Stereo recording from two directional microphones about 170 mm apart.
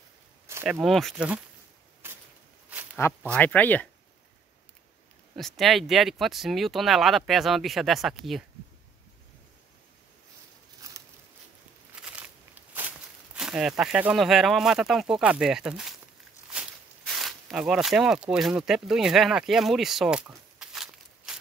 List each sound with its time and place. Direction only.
0.5 s a sound: 15° right (ahead or behind)
0.8 s speech: centre (ahead or behind)
2.0 s a sound: 15° right (ahead or behind)
3.0 s speech: 15° left (ahead or behind)
5.3 s speech: centre (ahead or behind)
11.9 s walk: 5° right (ahead or behind)
17.0 s speech: centre (ahead or behind)